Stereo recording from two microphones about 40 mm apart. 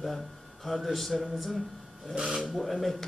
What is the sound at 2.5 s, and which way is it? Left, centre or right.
Speech, centre.